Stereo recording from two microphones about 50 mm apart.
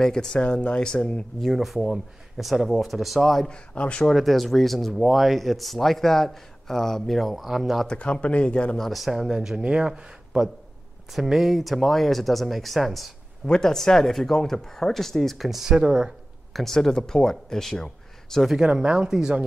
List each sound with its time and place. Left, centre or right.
0.0 s speech: centre
0.4 s speech: left
1.4 s speech: centre
3.4 s speech: left
4.0 s speech: centre
7.8 s speech: centre
8.7 s speech: centre
11.1 s speech: centre
13.5 s speech: centre
16.5 s speech: centre
18.6 s speech: centre